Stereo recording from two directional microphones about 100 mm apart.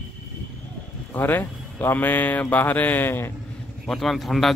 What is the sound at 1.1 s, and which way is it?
Speech, 20° left (ahead or behind).